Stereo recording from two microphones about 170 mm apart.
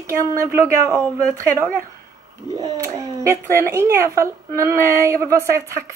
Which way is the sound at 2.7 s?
20° right (ahead or behind).